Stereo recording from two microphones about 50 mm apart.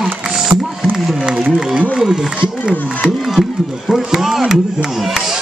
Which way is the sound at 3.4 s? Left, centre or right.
Centre.